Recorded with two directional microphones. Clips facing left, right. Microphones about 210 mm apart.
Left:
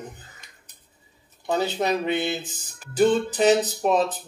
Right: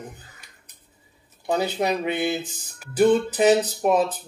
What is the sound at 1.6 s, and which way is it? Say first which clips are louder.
Speech: left 1 dB; 10° right (ahead or behind).